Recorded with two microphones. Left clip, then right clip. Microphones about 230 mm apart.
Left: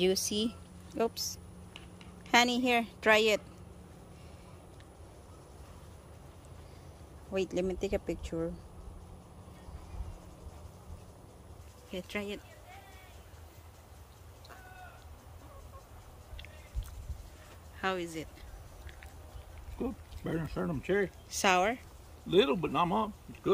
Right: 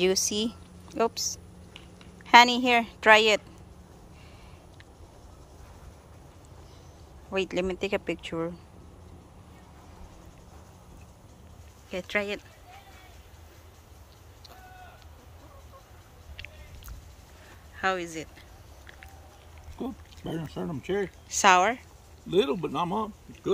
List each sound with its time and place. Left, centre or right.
0.0 s a woman's voice: centre
7.3 s a woman's voice: centre
11.9 s a woman's voice: centre
17.7 s speech: centre
19.8 s speech: centre